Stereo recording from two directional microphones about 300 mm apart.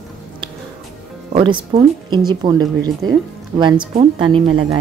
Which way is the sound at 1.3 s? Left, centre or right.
Centre.